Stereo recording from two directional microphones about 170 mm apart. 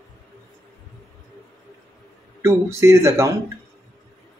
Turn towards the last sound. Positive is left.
turn(degrees=-15)  # may be behind; listen again after turning